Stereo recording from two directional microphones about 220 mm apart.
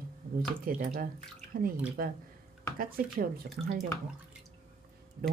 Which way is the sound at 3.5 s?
40° right (ahead or behind).